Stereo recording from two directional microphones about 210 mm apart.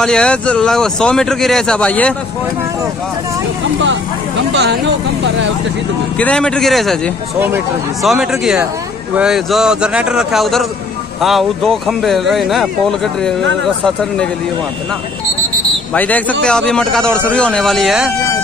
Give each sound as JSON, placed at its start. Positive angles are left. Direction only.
{"t": 0.0, "sound": "speech", "side_deg": 5}
{"t": 3.8, "sound": "speech", "side_deg": -60}
{"t": 6.1, "sound": "speech", "side_deg": 5}
{"t": 15.9, "sound": "speech", "side_deg": 5}